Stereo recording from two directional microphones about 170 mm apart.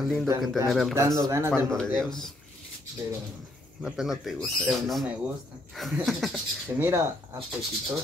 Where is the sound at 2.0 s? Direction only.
Centre (ahead or behind).